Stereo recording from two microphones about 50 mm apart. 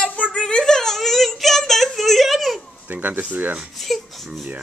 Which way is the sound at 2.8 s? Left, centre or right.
Right.